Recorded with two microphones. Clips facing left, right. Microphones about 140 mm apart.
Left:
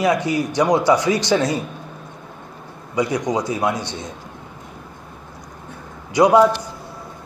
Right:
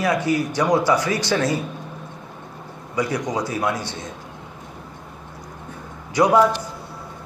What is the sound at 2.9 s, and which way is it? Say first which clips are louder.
Speech: left 3 dB; 15° left (ahead or behind).